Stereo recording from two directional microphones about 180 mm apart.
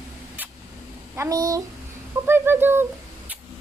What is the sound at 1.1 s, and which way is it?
A child's voice, 20° right (ahead or behind).